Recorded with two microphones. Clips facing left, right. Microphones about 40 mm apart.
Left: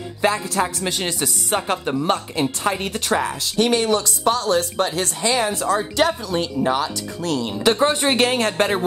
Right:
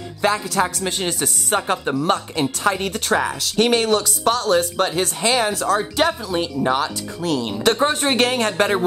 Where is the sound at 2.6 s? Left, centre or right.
Centre.